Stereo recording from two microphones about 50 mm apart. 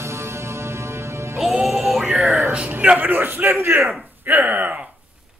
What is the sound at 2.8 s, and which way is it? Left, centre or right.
A man's voice, right.